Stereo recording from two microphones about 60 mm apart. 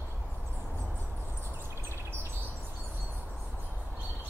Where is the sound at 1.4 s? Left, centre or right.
Right.